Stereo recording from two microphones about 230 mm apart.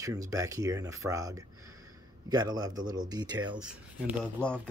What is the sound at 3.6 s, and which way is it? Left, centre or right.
Speech, centre.